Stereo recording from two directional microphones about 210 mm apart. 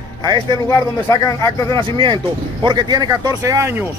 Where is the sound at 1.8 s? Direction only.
25° right (ahead or behind).